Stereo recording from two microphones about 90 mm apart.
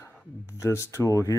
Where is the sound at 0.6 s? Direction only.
35° left (ahead or behind).